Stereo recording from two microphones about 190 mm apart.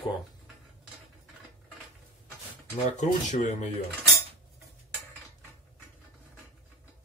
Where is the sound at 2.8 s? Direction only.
40° left (ahead or behind).